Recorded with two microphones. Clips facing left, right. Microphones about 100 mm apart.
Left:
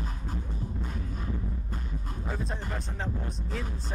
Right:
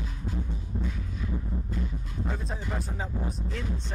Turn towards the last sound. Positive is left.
turn(degrees=-5)  # may be behind; listen again after turning